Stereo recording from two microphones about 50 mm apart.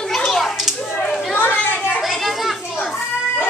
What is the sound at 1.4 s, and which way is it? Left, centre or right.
Children playing, left.